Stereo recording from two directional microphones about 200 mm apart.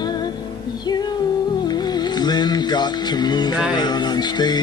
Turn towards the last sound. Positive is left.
turn(degrees=20)  # may be behind; listen again after turning